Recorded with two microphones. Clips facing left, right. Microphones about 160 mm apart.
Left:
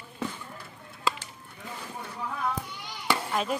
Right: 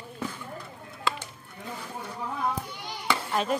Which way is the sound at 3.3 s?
Centre (ahead or behind).